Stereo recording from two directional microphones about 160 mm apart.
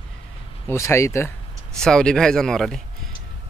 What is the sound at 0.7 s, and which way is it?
Speech, 15° left (ahead or behind).